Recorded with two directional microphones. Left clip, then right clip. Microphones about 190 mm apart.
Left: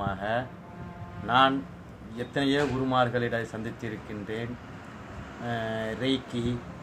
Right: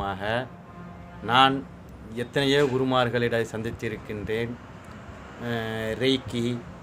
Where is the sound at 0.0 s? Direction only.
55° right (ahead or behind).